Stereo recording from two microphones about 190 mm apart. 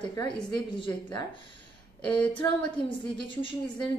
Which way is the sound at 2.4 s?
15° left (ahead or behind).